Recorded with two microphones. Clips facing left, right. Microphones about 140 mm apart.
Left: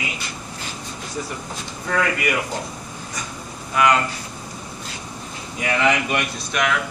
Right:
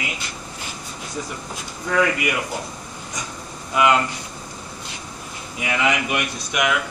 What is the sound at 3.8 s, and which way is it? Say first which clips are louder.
Speech: even; 20° right (ahead or behind).